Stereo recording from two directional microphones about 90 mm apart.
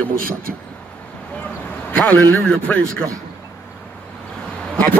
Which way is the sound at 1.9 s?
10° left (ahead or behind).